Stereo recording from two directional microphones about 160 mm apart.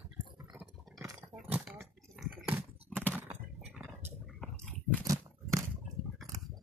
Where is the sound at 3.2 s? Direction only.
10° right (ahead or behind).